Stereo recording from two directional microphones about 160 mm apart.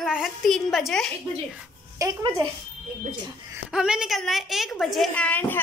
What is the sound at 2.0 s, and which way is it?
Speech, 20° right (ahead or behind).